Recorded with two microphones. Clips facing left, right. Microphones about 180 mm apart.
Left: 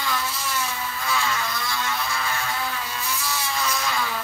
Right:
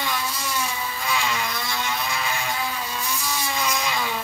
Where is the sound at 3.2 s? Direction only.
15° right (ahead or behind).